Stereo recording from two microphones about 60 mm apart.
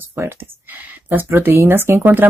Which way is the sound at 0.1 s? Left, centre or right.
Right.